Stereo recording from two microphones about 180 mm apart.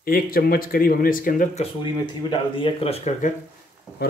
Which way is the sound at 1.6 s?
25° left (ahead or behind).